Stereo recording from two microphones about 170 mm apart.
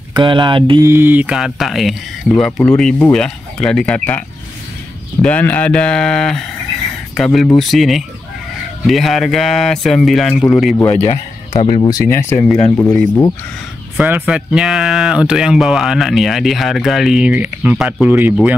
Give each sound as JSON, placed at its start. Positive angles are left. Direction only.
{"t": 0.1, "sound": "mantra", "side_deg": -30}
{"t": 0.8, "sound": "speech", "side_deg": -15}
{"t": 5.2, "sound": "speech", "side_deg": 10}
{"t": 10.9, "sound": "speech", "side_deg": 35}
{"t": 12.7, "sound": "speech", "side_deg": 5}
{"t": 13.9, "sound": "speech", "side_deg": -10}